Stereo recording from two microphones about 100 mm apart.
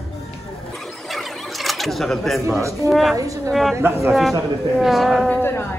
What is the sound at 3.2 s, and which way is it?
Speech, 35° right (ahead or behind).